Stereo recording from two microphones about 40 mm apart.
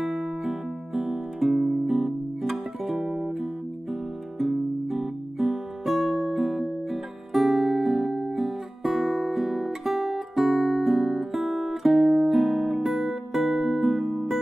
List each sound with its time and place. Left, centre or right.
0.0 s music: centre
3.9 s guitar: centre
12.1 s music: centre